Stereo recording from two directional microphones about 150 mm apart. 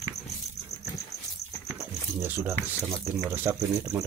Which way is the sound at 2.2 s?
15° right (ahead or behind).